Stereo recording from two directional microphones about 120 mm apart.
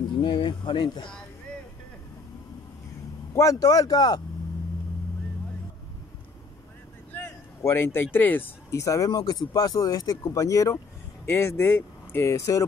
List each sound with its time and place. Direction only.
0.2 s speech: 40° left (ahead or behind)
3.3 s speech: 30° left (ahead or behind)
7.2 s speech: 20° left (ahead or behind)